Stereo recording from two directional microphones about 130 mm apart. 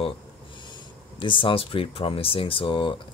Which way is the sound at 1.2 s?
40° left (ahead or behind).